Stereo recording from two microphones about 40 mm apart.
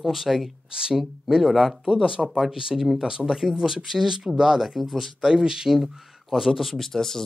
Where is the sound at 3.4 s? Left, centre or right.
Centre.